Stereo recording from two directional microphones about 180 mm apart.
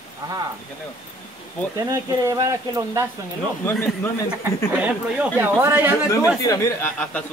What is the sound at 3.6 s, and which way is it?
Speech, 10° left (ahead or behind).